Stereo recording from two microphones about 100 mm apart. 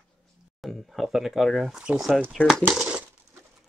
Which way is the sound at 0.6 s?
Centre (ahead or behind).